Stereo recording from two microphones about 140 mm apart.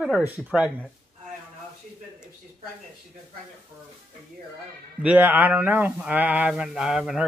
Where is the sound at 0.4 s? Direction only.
5° right (ahead or behind).